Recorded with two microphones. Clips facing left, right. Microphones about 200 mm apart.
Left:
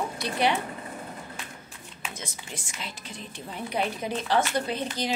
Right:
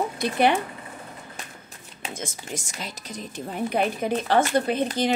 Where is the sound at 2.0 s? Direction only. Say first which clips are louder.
Right 6 dB; 45° right (ahead or behind).